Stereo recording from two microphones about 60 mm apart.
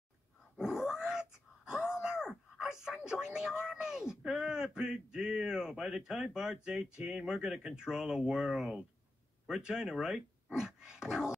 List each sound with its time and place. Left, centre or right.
0.6 s groan: centre
3.1 s a sound: centre
3.7 s speech: centre